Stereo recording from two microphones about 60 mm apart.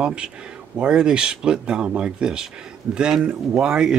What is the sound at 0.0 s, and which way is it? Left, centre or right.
Speech, centre.